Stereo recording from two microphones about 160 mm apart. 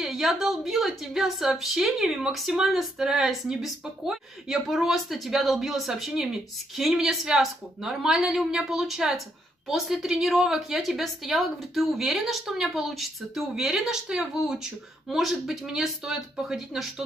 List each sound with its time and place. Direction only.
0.0 s a woman's voice: centre (ahead or behind)